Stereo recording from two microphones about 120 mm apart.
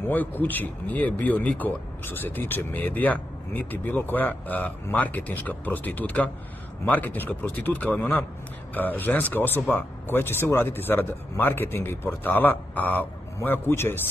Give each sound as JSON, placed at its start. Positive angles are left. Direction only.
{"t": 0.1, "sound": "speech", "side_deg": 15}